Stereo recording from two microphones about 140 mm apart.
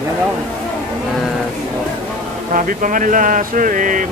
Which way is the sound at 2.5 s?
70° right (ahead or behind).